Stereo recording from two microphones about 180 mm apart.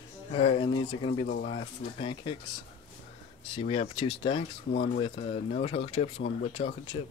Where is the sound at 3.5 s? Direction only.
35° left (ahead or behind).